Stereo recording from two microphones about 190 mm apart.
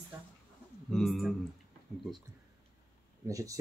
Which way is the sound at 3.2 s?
15° right (ahead or behind).